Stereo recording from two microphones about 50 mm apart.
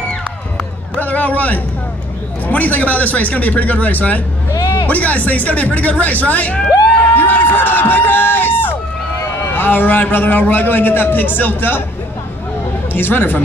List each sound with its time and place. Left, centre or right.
0.9 s a sound: left
2.4 s a man's voice: left
7.2 s a sound: left
7.4 s crowd: left
9.5 s a man's voice: left
12.9 s speech: left